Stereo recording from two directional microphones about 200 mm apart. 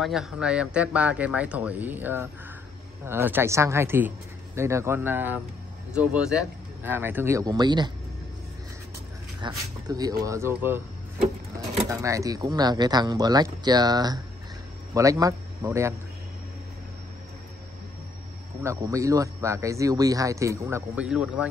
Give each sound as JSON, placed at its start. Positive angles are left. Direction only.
{"t": 0.0, "sound": "speech", "side_deg": 0}
{"t": 9.4, "sound": "speech", "side_deg": -20}
{"t": 11.9, "sound": "speech", "side_deg": -15}
{"t": 18.6, "sound": "speech", "side_deg": -15}